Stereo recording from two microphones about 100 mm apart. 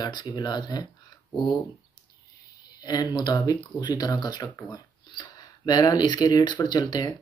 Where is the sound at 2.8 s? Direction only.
40° left (ahead or behind).